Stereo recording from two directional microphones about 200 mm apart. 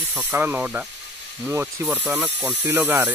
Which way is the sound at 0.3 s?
10° right (ahead or behind).